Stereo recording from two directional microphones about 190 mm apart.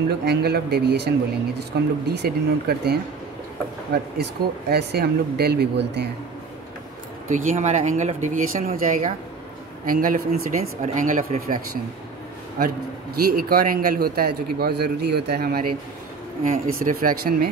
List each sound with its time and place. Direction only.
0.2 s speech: 60° right (ahead or behind)
2.1 s speech: 55° right (ahead or behind)
7.2 s a man's voice: 40° right (ahead or behind)
13.1 s a man's voice: 55° right (ahead or behind)